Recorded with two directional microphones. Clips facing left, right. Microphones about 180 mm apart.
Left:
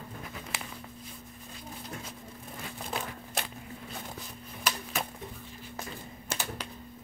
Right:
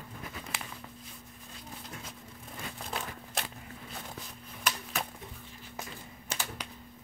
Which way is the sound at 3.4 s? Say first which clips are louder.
Left 2 dB; centre (ahead or behind).